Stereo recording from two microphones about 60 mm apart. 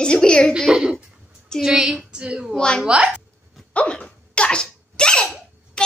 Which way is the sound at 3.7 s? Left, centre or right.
Left.